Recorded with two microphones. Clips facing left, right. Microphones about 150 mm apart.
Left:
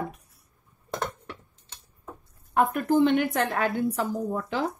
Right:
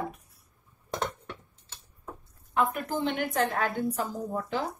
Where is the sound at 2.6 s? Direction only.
55° left (ahead or behind); by 4.0 s 70° left (ahead or behind).